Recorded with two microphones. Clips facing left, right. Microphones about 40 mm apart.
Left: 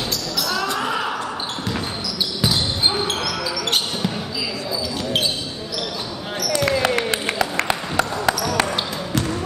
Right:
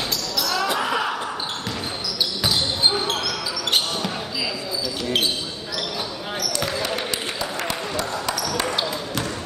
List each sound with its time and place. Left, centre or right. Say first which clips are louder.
0.4 s basketball bounce: even; centre
6.6 s basketball bounce: left 8 dB; left